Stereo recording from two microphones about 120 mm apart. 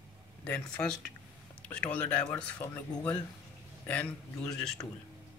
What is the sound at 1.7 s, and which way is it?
Speech, 10° left (ahead or behind).